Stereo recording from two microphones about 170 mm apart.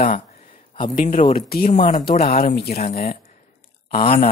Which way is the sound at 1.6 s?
45° left (ahead or behind).